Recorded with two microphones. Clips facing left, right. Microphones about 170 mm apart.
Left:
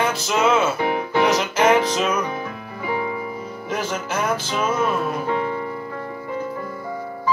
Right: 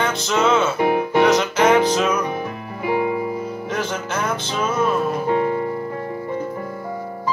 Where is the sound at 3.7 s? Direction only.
5° left (ahead or behind).